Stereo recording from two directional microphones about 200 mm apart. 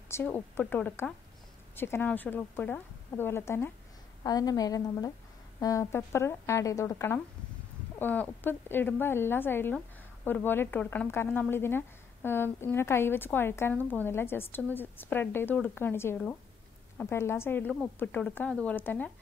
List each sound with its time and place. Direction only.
0.1 s a woman's voice: 10° left (ahead or behind)